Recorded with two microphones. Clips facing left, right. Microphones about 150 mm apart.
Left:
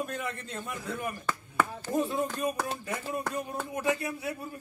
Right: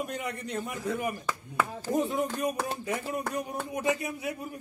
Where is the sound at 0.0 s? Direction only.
15° right (ahead or behind).